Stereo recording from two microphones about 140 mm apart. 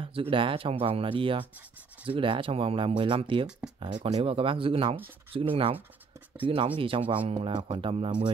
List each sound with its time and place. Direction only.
0.0 s speech: 40° right (ahead or behind)